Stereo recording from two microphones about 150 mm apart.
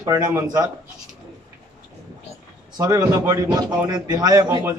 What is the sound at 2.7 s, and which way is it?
A man's voice, 25° right (ahead or behind).